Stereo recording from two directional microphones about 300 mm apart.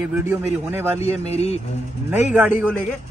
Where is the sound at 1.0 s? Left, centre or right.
Left.